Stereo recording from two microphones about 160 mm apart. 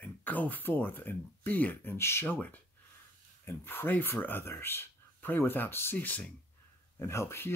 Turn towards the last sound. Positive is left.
turn(degrees=15)  # may be behind; listen again after turning